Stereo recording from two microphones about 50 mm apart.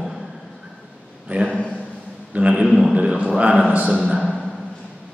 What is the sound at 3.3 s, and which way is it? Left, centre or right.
Speech, right.